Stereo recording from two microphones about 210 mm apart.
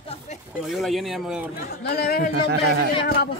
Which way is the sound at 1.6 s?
50° left (ahead or behind).